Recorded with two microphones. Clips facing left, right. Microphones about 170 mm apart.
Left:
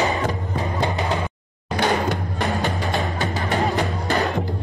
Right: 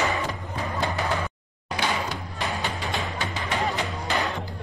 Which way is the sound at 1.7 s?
55° left (ahead or behind).